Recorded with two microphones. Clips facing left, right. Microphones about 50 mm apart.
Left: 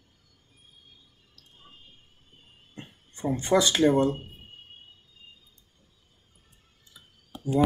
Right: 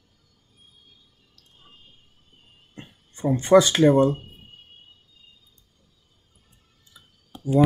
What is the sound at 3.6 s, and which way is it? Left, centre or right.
Speech, right.